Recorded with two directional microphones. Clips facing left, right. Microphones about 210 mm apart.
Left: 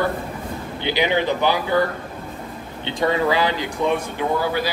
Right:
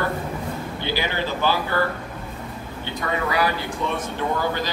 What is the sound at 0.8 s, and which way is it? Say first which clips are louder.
Speech: left 7 dB; 20° left (ahead or behind).